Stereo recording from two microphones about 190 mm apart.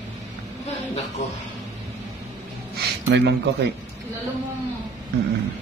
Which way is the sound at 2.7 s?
60° right (ahead or behind).